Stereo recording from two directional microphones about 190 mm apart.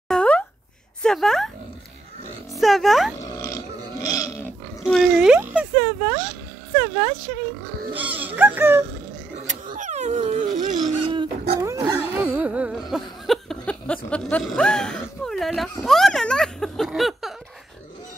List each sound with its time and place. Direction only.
0.1 s a sound: 5° left (ahead or behind)
1.0 s speech: centre (ahead or behind)
2.5 s speech: centre (ahead or behind)
3.2 s pig: 15° left (ahead or behind)
4.8 s speech: centre (ahead or behind)
9.5 s a sound: 40° right (ahead or behind)
10.8 s speech: 25° right (ahead or behind)
11.6 s a sound: 15° right (ahead or behind); by 13.9 s 5° left (ahead or behind)
14.1 s speech: 5° left (ahead or behind)